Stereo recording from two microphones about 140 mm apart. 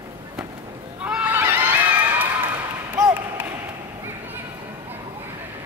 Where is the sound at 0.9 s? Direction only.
10° right (ahead or behind).